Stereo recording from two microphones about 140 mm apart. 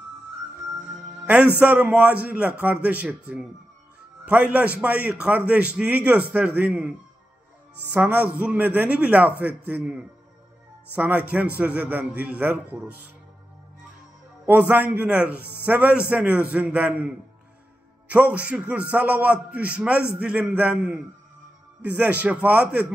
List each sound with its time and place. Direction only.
1.6 s a man's voice: 10° right (ahead or behind)
14.4 s a man's voice: 10° right (ahead or behind)